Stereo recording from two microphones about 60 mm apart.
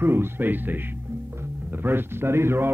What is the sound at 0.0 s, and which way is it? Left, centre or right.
Speech, right.